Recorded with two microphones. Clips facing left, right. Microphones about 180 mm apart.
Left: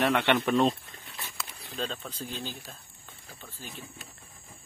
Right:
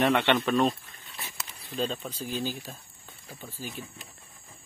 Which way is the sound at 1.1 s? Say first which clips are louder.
Even; 10° right (ahead or behind).